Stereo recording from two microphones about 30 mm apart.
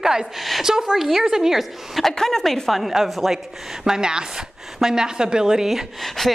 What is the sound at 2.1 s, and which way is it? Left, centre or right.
Speech, centre.